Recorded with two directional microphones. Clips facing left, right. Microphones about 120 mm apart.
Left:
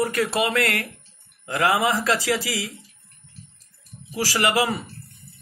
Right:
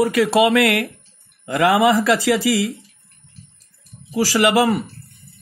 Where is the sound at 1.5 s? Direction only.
65° right (ahead or behind).